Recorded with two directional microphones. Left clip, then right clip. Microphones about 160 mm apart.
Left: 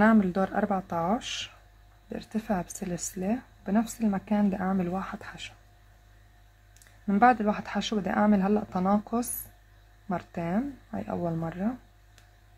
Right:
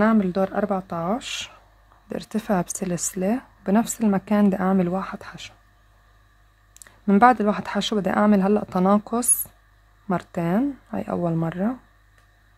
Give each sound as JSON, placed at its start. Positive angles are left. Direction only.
{"t": 0.0, "sound": "speech", "side_deg": -30}
{"t": 6.7, "sound": "speech", "side_deg": -40}